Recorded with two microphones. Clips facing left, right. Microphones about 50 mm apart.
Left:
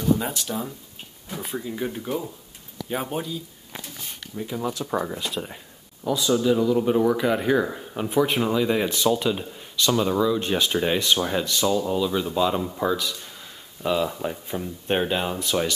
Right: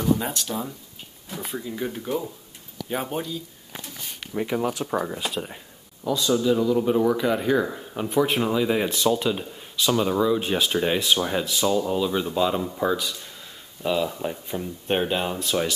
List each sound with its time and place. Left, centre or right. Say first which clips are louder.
0.2 s speech: even; centre
4.3 s speech: right 6 dB; right
4.6 s speech: right 1 dB; right
4.8 s speech: even; centre